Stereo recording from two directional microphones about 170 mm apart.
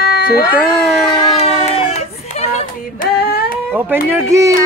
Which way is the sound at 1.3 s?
35° left (ahead or behind).